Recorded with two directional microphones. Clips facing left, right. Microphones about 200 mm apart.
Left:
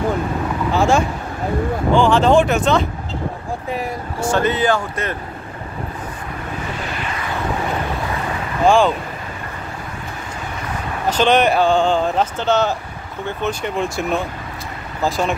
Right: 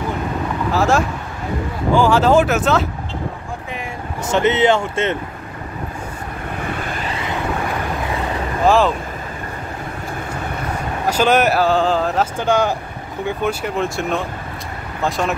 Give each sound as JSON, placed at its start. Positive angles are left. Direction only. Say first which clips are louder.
{"t": 0.7, "sound": "speech", "louder": "left 1 dB", "side_deg": 0}
{"t": 4.2, "sound": "speech", "louder": "right 2 dB", "side_deg": -20}
{"t": 6.8, "sound": "vehicle", "louder": "right 1 dB", "side_deg": -50}
{"t": 8.6, "sound": "speech", "louder": "left 1 dB", "side_deg": 0}
{"t": 11.1, "sound": "speech", "louder": "even", "side_deg": -10}